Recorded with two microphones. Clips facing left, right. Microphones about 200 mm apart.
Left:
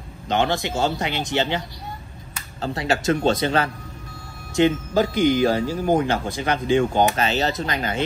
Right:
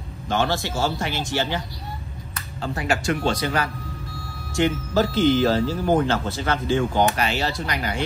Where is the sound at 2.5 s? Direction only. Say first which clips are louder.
Left 1 dB; 35° left (ahead or behind).